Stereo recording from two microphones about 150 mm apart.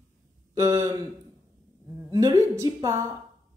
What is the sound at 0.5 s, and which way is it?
Speech, 20° right (ahead or behind).